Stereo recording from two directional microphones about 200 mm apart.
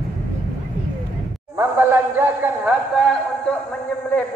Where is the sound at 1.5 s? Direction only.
10° right (ahead or behind).